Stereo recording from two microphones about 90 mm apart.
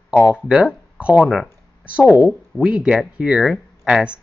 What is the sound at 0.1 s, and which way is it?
Speech, 10° right (ahead or behind).